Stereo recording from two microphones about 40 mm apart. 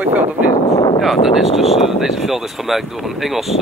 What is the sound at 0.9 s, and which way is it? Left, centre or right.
Speech, centre.